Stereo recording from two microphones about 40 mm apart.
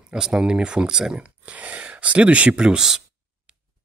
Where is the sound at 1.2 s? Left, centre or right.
Right.